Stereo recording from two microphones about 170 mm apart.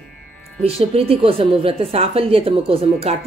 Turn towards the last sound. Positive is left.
turn(degrees=-35)  # may be behind; listen again after turning